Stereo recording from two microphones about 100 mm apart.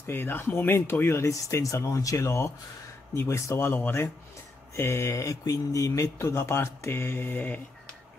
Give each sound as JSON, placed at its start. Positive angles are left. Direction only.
{"t": 0.0, "sound": "speech", "side_deg": 20}